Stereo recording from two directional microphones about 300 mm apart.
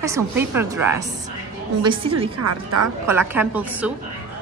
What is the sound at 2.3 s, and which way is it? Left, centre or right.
Speech, right.